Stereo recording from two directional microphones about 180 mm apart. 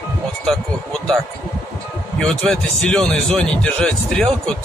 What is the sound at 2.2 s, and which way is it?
Speech, 5° left (ahead or behind).